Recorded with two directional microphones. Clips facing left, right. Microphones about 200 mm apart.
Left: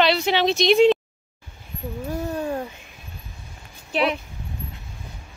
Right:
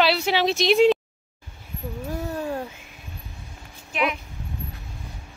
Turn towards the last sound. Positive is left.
turn(degrees=35)  # may be behind; listen again after turning